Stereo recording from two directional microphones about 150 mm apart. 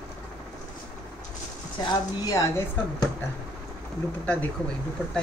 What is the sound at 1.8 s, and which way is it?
Speech, 25° left (ahead or behind).